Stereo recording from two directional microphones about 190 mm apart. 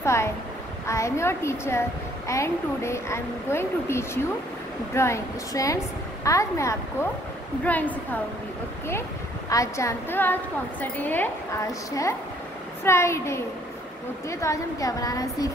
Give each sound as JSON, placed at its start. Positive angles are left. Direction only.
{"t": 0.0, "sound": "a woman's voice", "side_deg": 15}
{"t": 9.5, "sound": "a woman's voice", "side_deg": 15}